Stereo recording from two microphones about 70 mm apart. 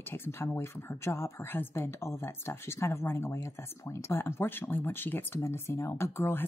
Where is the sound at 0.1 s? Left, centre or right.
Left.